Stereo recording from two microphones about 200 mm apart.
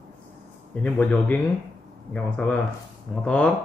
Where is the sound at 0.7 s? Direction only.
5° left (ahead or behind).